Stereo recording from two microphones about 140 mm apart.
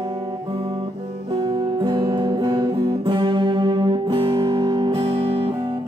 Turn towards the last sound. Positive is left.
turn(degrees=-30)  # may be behind; listen again after turning